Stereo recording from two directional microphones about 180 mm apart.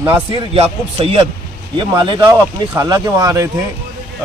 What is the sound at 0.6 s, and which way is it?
Speech, 30° right (ahead or behind).